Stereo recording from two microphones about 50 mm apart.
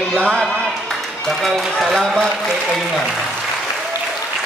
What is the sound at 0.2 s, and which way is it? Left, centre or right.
Speech, centre.